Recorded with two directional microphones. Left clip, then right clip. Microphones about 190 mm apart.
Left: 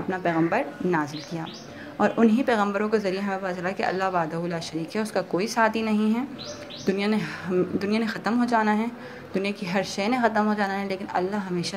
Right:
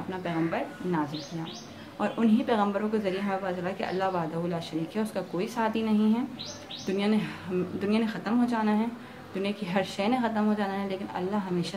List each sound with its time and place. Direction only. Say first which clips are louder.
0.1 s a woman's voice: left 7 dB; 25° left (ahead or behind)